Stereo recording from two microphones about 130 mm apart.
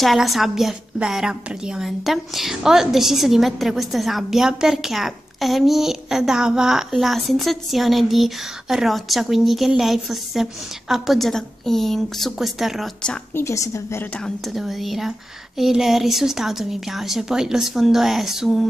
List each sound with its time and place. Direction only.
0.0 s a woman's voice: centre (ahead or behind)
13.3 s a woman's voice: 20° left (ahead or behind)
14.2 s a woman's voice: centre (ahead or behind)